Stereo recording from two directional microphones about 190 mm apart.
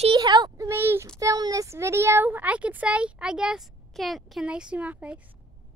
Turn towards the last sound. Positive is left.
turn(degrees=-10)  # may be behind; listen again after turning